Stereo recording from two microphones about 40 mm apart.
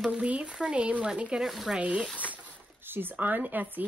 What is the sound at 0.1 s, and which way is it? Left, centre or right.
Speech, right.